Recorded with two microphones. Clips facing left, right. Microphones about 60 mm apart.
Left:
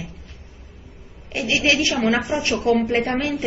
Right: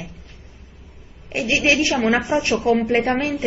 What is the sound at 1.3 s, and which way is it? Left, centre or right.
Speech, right.